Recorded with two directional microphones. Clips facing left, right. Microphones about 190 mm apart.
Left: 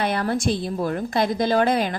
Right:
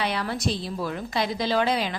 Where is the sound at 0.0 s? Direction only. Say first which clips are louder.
Left 5 dB; 50° left (ahead or behind).